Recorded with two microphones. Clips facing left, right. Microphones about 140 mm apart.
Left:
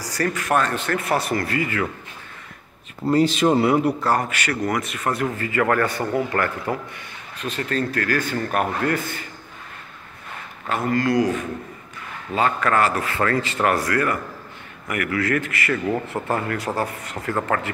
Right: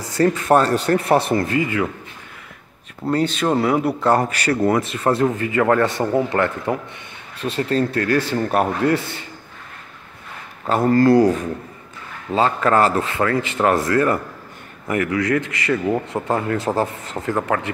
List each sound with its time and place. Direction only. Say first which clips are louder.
0.0 s speech: right 6 dB; 25° right (ahead or behind)
3.1 s speech: left 2 dB; 5° left (ahead or behind)
4.0 s speech: right 4 dB; 25° right (ahead or behind)
7.3 s speech: right 5 dB; 30° right (ahead or behind)
10.7 s speech: right 7 dB; 35° right (ahead or behind); by 17.6 s 15° right (ahead or behind)